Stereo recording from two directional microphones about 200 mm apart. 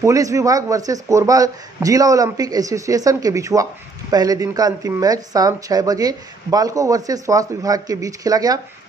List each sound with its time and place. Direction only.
0.0 s speech: 15° right (ahead or behind)